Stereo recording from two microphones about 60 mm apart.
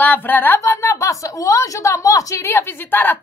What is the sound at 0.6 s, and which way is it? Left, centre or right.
A woman's voice, left.